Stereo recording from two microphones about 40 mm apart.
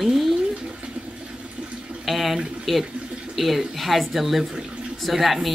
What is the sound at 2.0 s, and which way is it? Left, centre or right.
A woman's voice, centre.